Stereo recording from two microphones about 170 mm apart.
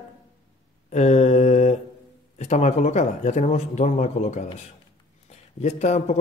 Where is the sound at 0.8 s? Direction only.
40° left (ahead or behind).